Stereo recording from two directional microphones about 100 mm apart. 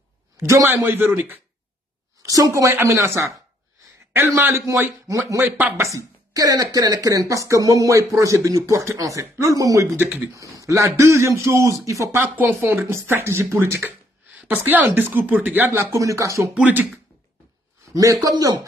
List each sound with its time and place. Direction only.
0.4 s speech: 25° right (ahead or behind)
2.2 s speech: 35° right (ahead or behind)
4.4 s speech: 25° right (ahead or behind)
9.9 s speech: 25° right (ahead or behind)
16.5 s speech: 15° right (ahead or behind)
17.9 s speech: 35° right (ahead or behind)